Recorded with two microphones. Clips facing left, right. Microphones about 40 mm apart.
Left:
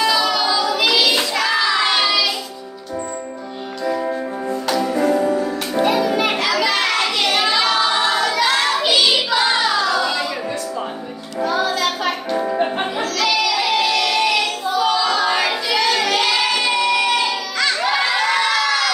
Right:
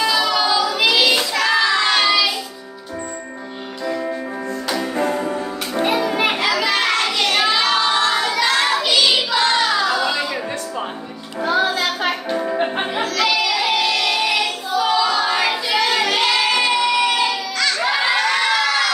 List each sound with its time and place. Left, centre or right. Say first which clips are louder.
0.0 s child singing: even; centre
4.9 s music: left 5 dB; right
5.9 s children playing: left 1 dB; centre
6.5 s a sound: even; centre
7.3 s child singing: even; centre
9.8 s a sound: even; centre
11.4 s music: right 1 dB; right
13.0 s music: even; centre
15.7 s child singing: left 1 dB; centre
17.6 s crowd: left 1 dB; centre
17.9 s crowd: even; centre